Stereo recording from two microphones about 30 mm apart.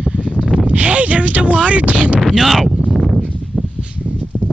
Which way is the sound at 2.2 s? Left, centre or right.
Centre.